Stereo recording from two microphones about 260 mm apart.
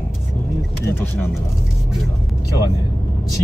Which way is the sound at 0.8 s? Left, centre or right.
Centre.